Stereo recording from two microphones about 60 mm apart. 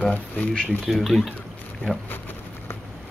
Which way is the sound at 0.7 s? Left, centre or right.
Centre.